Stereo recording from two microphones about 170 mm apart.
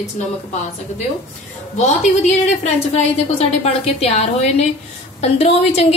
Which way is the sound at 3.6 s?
35° left (ahead or behind).